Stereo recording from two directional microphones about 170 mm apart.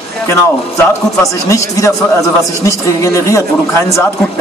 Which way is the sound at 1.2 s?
20° left (ahead or behind).